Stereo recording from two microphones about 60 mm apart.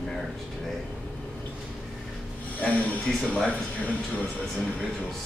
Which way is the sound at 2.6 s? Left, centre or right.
Centre.